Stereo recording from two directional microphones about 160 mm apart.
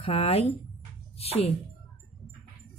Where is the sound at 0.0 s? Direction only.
40° left (ahead or behind).